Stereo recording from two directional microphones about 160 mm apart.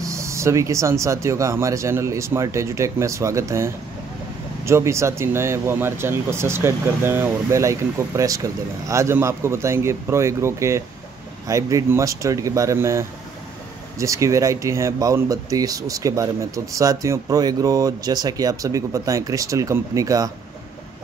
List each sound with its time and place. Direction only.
0.0 s speech: 20° right (ahead or behind)